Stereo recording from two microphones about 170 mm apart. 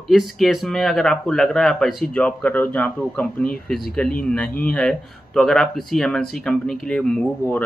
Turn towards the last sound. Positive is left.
turn(degrees=5)  # may be behind; listen again after turning